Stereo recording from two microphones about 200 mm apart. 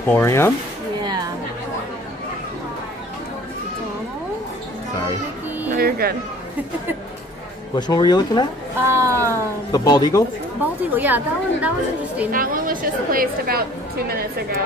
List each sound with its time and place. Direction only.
0.0 s speech: 15° left (ahead or behind)
1.0 s chatter: 20° right (ahead or behind)
5.8 s a woman's voice: 50° right (ahead or behind)
7.7 s speech: 20° left (ahead or behind)
8.7 s a woman's voice: 15° right (ahead or behind)
9.7 s speech: 20° left (ahead or behind)
10.6 s a woman's voice: 10° right (ahead or behind)
12.3 s a woman's voice: 45° right (ahead or behind)